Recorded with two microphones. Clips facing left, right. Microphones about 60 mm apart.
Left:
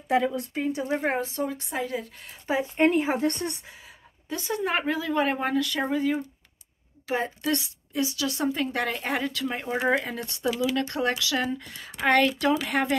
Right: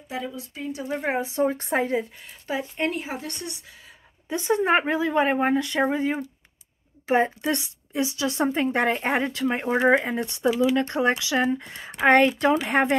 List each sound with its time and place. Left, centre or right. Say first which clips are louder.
0.1 s speech: left 8 dB; left
0.6 s speech: left 4 dB; left
1.2 s a woman's voice: right 6 dB; right
1.5 s speech: right 6 dB; right
2.4 s speech: left 4 dB; left
4.3 s a woman's voice: right 6 dB; right